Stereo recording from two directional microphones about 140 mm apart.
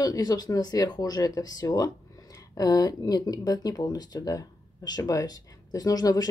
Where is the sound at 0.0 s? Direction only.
25° left (ahead or behind).